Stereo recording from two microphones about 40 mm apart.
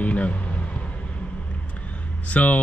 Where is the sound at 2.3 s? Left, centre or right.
Left.